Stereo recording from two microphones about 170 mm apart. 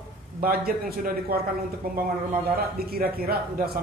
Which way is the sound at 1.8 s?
60° right (ahead or behind).